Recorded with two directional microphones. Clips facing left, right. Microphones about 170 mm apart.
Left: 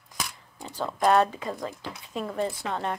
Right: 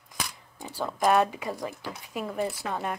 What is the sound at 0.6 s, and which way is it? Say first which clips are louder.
Speech: left 1 dB; 10° right (ahead or behind).